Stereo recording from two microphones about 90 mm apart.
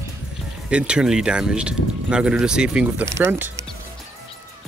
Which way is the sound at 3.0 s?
30° right (ahead or behind).